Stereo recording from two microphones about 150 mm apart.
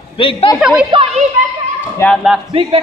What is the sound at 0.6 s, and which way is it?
Speech, 5° right (ahead or behind).